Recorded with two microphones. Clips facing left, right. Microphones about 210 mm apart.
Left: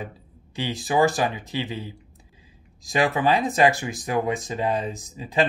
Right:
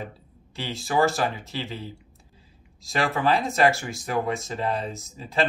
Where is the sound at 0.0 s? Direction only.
15° left (ahead or behind).